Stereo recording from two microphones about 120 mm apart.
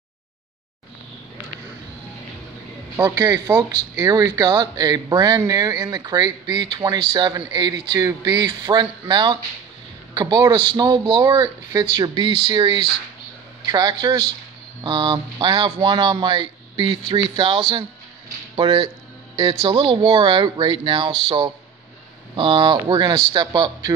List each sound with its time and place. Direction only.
3.0 s speech: 30° right (ahead or behind)
22.3 s speech: 45° right (ahead or behind)